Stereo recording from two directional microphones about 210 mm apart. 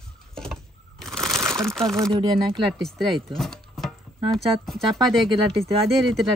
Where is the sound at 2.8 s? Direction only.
Centre (ahead or behind).